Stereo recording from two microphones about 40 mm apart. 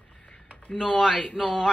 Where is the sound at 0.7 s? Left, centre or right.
Centre.